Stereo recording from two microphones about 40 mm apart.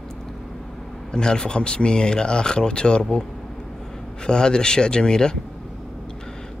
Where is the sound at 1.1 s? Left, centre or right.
Centre.